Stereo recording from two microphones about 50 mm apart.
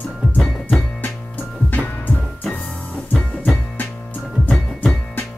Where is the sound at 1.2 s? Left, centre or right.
Left.